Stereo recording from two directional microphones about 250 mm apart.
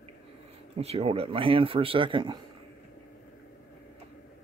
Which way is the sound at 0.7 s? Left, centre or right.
Right.